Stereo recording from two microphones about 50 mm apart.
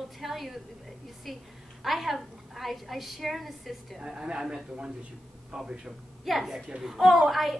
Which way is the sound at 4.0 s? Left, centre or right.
Centre.